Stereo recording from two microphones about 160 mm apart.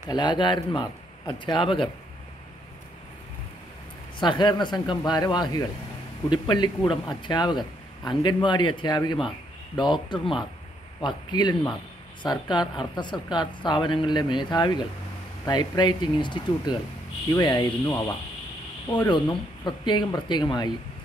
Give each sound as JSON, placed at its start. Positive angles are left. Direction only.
{"t": 0.1, "sound": "speech", "side_deg": 30}
{"t": 4.2, "sound": "speech", "side_deg": 30}